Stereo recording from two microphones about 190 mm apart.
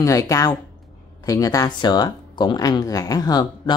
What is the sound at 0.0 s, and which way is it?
Speech, 15° left (ahead or behind).